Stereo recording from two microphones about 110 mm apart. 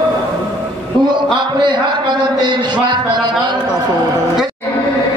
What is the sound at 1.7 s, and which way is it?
A man's voice, 45° right (ahead or behind).